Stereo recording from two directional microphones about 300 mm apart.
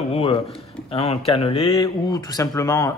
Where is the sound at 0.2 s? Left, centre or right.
Centre.